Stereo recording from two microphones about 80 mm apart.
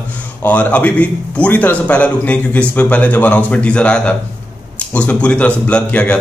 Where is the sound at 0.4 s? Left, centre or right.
Centre.